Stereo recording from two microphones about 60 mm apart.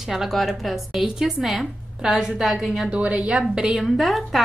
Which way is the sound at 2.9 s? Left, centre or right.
Centre.